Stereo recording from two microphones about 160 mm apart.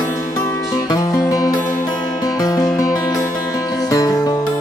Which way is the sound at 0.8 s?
25° left (ahead or behind).